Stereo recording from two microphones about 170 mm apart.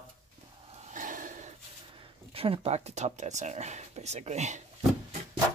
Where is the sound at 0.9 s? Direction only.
50° right (ahead or behind).